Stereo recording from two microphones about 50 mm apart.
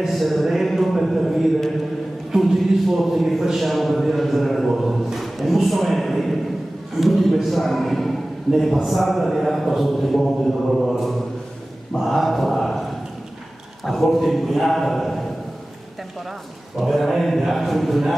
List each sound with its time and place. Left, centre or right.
0.0 s a sound: centre
2.3 s music: centre
3.4 s a man's voice: centre
13.8 s speech: centre
16.8 s speech: centre